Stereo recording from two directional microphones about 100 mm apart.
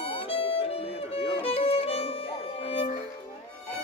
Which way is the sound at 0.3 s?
70° left (ahead or behind).